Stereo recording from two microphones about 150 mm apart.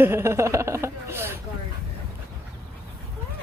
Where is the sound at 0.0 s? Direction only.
15° right (ahead or behind).